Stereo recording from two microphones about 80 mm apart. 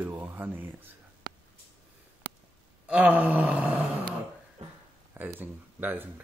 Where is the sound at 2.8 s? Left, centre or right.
Centre.